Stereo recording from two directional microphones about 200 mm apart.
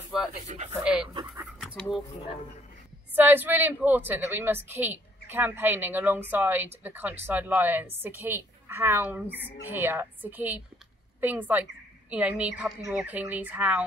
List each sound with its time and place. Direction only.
0.5 s speech: 35° right (ahead or behind)
1.0 s speech: 25° right (ahead or behind)
1.4 s pant: 5° right (ahead or behind)
3.2 s a woman's voice: 10° right (ahead or behind)